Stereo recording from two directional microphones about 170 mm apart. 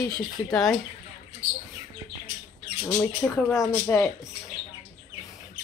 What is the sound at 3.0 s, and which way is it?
Speech, 10° left (ahead or behind).